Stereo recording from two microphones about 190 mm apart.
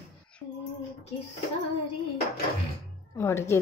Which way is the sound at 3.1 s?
15° left (ahead or behind).